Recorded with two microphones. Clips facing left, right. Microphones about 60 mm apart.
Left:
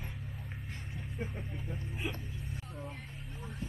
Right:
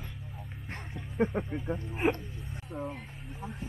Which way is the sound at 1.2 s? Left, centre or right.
Right.